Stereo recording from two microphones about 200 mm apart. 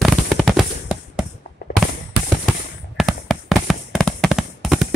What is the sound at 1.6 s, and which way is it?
Fireworks, 50° left (ahead or behind).